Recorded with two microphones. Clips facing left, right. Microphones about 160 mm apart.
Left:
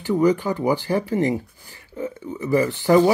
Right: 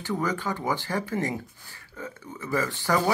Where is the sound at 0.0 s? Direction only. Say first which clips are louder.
Left 10 dB; 20° left (ahead or behind).